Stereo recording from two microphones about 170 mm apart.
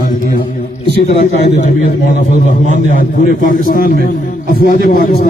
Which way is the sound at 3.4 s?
55° left (ahead or behind).